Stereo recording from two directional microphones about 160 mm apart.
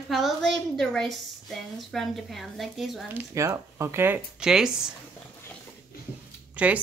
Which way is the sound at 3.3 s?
20° right (ahead or behind).